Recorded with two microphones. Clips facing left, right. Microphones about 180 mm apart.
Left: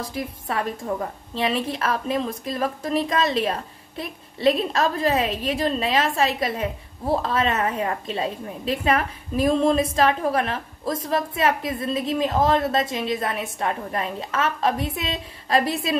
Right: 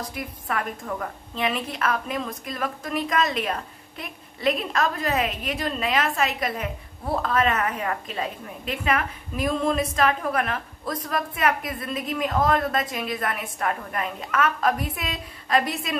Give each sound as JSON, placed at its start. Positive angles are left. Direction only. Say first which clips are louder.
{"t": 0.0, "sound": "a woman's voice", "louder": "left 4 dB", "side_deg": 30}